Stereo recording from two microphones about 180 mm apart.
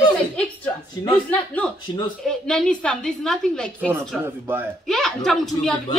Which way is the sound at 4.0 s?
10° right (ahead or behind).